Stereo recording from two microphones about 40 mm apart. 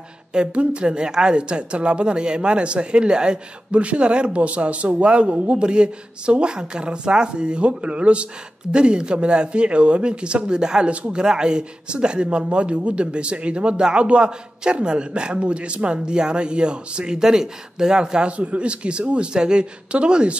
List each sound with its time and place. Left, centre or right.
0.3 s speech: right
10.9 s speech: right
11.1 s speech: right
18.3 s speech: right